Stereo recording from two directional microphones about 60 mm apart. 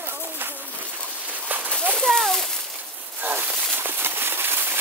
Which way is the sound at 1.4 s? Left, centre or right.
Right.